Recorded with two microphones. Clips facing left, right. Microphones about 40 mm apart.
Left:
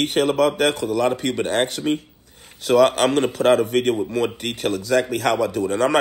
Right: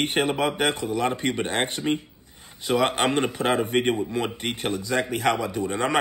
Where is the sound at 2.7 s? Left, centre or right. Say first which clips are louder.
Left 6 dB; right.